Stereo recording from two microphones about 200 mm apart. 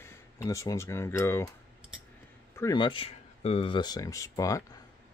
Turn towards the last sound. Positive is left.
turn(degrees=15)  # may be behind; listen again after turning